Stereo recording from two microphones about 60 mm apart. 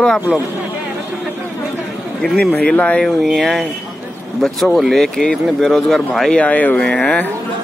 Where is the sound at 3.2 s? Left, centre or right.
Centre.